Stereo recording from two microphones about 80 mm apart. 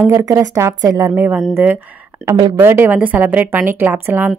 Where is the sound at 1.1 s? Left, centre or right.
Right.